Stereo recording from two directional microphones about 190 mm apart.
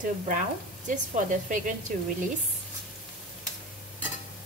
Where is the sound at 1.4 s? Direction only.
45° right (ahead or behind).